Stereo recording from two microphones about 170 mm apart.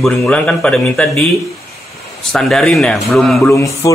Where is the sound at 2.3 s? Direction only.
Centre (ahead or behind).